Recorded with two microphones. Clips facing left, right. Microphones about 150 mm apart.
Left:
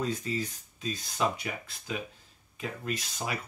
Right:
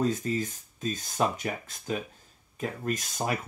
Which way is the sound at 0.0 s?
45° right (ahead or behind).